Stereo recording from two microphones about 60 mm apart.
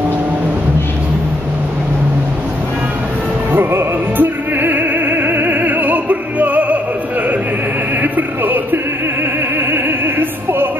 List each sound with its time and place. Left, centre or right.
3.5 s music: right
9.7 s opera: right